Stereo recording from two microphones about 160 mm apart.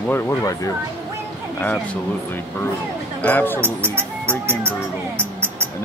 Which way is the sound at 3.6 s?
15° right (ahead or behind).